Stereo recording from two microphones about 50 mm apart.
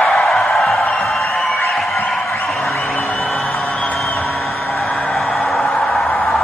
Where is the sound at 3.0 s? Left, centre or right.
Centre.